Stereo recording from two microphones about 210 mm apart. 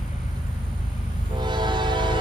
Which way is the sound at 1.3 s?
20° right (ahead or behind).